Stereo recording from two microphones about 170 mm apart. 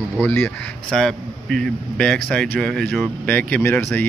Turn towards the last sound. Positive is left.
turn(degrees=10)  # may be behind; listen again after turning